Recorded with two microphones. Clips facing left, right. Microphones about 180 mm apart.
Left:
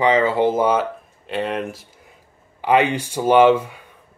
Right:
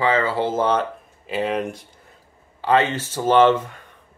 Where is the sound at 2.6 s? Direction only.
15° left (ahead or behind).